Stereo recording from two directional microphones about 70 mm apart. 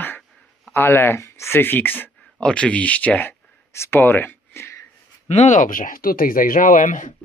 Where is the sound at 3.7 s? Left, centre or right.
Left.